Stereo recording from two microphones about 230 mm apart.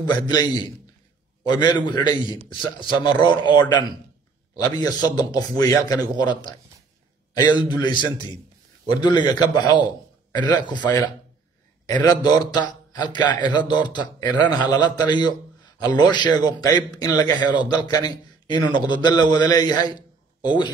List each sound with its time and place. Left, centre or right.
0.0 s a man's voice: centre